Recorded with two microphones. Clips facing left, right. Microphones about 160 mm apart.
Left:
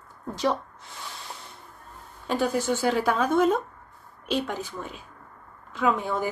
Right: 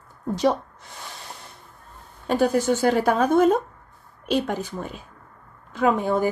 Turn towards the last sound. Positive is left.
turn(degrees=-45)  # may be behind; listen again after turning